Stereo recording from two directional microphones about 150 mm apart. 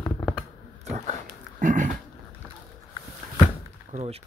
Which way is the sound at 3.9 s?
45° right (ahead or behind).